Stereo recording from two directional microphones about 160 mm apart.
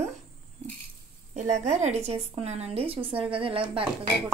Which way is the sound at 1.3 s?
50° right (ahead or behind).